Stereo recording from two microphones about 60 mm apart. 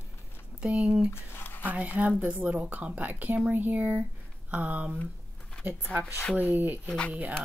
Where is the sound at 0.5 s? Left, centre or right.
Right.